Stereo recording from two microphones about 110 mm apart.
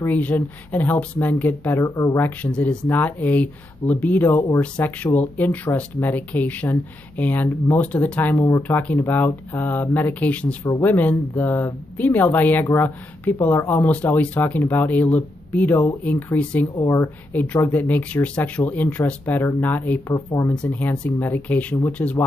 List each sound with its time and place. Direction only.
0.0 s speech: 15° left (ahead or behind)
8.4 s a woman's voice: 25° left (ahead or behind)
17.3 s a woman's voice: 15° left (ahead or behind)